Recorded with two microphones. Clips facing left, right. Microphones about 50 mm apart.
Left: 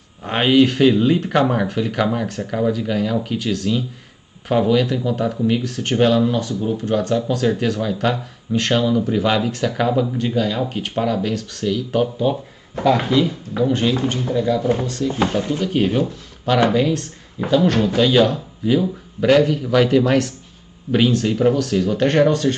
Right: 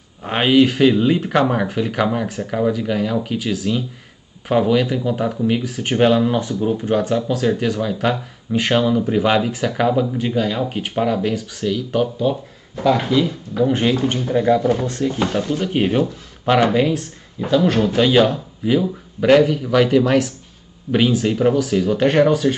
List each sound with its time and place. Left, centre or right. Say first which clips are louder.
0.2 s speech: even; centre
13.7 s speech: right 1 dB; right
14.3 s speech: right 3 dB; right; by 16.9 s centre
17.5 s speech: even; centre